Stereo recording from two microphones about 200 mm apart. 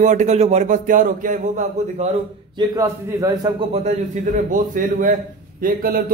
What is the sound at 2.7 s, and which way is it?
Speech, 15° right (ahead or behind).